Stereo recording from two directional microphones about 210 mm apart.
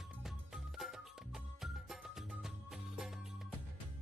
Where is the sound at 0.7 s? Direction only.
Centre (ahead or behind).